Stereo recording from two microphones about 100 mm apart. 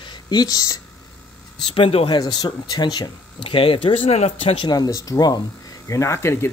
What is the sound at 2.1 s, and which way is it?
Speech, 45° left (ahead or behind).